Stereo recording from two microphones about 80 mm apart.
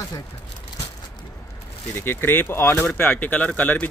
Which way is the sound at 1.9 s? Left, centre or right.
Left.